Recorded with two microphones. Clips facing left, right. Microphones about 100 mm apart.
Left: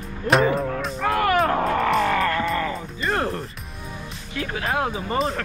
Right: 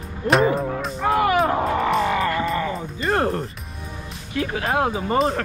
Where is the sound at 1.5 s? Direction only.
15° right (ahead or behind).